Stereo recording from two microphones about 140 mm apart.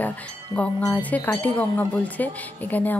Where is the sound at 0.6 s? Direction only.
10° left (ahead or behind).